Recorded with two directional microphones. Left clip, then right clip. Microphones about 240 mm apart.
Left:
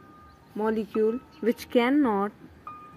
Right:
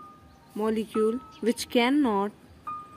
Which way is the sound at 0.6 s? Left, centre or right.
Centre.